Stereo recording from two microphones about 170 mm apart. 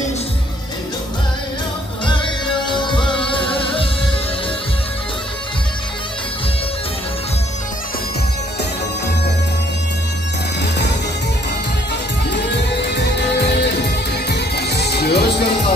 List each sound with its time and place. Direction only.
2.0 s music: 30° left (ahead or behind)
10.6 s music: 90° left
12.8 s music: 85° left